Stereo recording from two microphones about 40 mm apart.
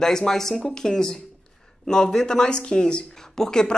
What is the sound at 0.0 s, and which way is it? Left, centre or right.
Speech, centre.